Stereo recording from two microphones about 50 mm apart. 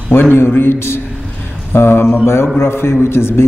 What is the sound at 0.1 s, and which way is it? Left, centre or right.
A man's voice, left.